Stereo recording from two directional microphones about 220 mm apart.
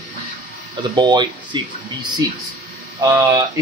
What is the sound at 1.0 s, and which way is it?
Speech, 20° right (ahead or behind).